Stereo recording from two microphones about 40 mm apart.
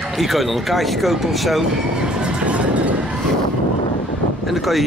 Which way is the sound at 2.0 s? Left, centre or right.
Right.